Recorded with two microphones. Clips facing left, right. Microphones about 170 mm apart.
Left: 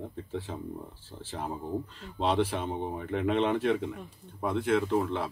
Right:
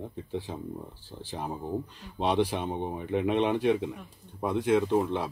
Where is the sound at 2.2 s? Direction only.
15° right (ahead or behind).